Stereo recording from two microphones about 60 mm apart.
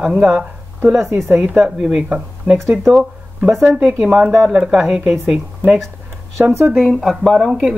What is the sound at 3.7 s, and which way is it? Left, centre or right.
Speech, centre.